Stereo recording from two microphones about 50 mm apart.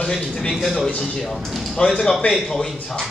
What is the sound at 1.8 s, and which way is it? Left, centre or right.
Speech, centre.